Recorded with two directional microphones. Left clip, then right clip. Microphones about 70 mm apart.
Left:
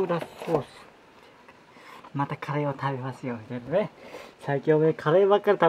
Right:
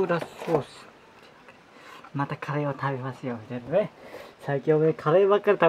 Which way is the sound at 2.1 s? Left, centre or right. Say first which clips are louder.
Even; centre.